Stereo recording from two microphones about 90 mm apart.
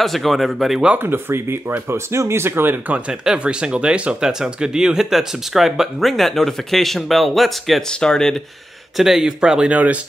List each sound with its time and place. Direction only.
0.0 s speech: centre (ahead or behind)
0.9 s speech: 25° right (ahead or behind)
3.1 s speech: 10° right (ahead or behind); by 8.4 s 5° left (ahead or behind)
8.9 s speech: 5° right (ahead or behind)